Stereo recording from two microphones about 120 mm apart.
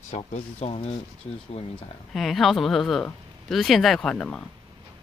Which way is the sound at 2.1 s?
Centre (ahead or behind).